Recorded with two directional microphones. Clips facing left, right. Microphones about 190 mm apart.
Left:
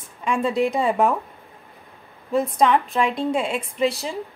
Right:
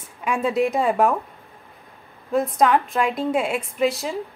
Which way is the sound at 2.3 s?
Centre (ahead or behind).